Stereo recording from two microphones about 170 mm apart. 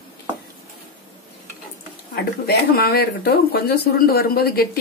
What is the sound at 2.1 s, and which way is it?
Speech, 65° left (ahead or behind).